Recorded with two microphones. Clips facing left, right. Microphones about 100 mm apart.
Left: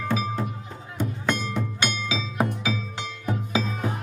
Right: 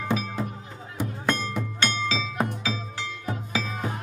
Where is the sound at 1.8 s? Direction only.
15° left (ahead or behind).